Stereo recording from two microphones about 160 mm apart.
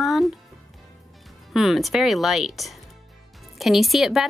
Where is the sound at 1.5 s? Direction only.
Centre (ahead or behind).